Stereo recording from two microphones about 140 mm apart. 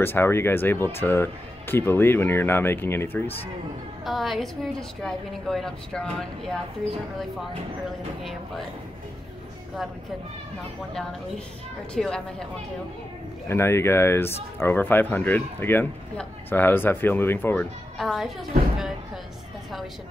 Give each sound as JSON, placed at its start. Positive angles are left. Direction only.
{"t": 0.0, "sound": "speech", "side_deg": 15}
{"t": 4.0, "sound": "a woman's voice", "side_deg": 0}
{"t": 11.0, "sound": "a woman's voice", "side_deg": 5}
{"t": 13.5, "sound": "speech", "side_deg": 20}
{"t": 17.9, "sound": "a woman's voice", "side_deg": 0}